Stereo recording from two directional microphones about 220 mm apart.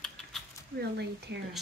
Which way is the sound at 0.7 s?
50° right (ahead or behind).